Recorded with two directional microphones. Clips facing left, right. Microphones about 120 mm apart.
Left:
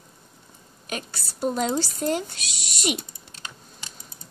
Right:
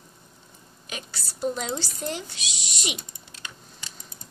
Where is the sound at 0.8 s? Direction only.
45° left (ahead or behind).